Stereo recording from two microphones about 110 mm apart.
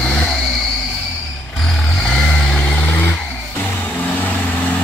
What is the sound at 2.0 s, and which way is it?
Vehicle, 10° left (ahead or behind).